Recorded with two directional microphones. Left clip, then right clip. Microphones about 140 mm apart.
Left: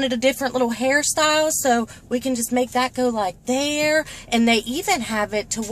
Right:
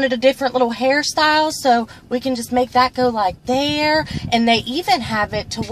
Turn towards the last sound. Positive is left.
turn(degrees=25)  # may be behind; listen again after turning